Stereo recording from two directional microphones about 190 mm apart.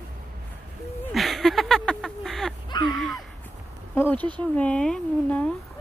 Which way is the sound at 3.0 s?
Centre (ahead or behind).